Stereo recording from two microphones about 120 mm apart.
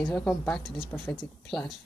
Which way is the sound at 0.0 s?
10° left (ahead or behind).